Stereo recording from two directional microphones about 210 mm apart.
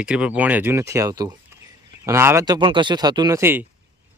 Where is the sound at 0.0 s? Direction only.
5° right (ahead or behind).